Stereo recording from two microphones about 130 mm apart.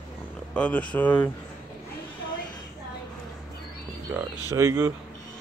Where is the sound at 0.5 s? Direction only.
10° left (ahead or behind).